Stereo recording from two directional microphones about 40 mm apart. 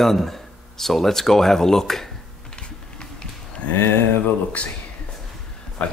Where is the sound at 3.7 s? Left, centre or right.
Left.